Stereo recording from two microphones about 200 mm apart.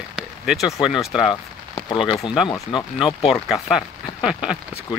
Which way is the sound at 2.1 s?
25° left (ahead or behind).